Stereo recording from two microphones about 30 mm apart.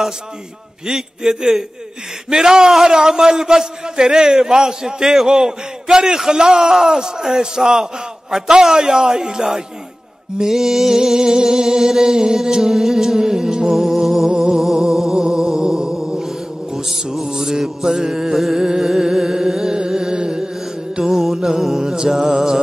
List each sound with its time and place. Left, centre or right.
0.8 s a man's voice: right
10.4 s music: centre
11.1 s a man's voice: centre
13.9 s music: centre
14.3 s music: centre
18.6 s a man's voice: centre
18.9 s music: centre
21.0 s music: centre